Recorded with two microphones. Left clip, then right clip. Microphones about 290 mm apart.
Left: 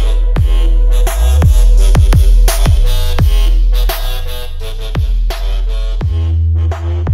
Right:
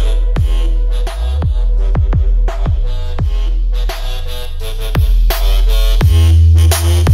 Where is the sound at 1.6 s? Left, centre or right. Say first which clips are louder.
Left 6 dB; left.